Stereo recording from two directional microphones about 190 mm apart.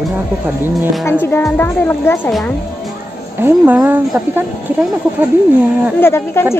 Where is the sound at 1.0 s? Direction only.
10° left (ahead or behind).